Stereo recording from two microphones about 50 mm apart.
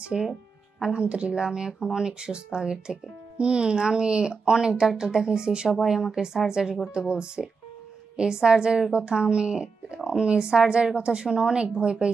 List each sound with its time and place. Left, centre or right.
0.1 s speech: centre
0.9 s speech: right